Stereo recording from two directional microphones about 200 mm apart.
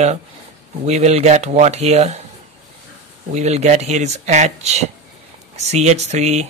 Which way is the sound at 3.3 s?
35° right (ahead or behind).